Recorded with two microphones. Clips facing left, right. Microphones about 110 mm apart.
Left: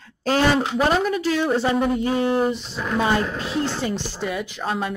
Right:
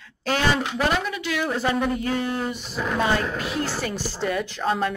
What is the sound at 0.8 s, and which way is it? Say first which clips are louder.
A woman's voice: left 4 dB; 40° left (ahead or behind).